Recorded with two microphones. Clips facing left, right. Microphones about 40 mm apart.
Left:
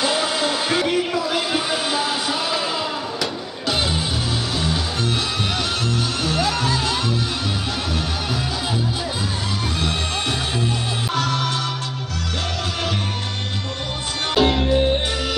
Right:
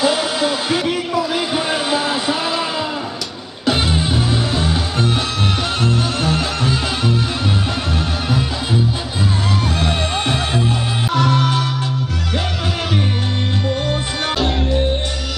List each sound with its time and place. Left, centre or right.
0.0 s music: centre
1.7 s a sound: right
3.6 s music: centre
9.8 s music: right